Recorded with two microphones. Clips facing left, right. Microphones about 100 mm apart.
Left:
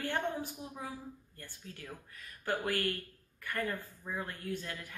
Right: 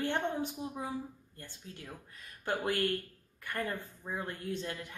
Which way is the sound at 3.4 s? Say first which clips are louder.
Even; 20° right (ahead or behind).